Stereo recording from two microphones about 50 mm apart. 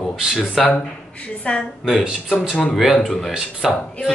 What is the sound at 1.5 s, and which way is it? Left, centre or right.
Speech, left.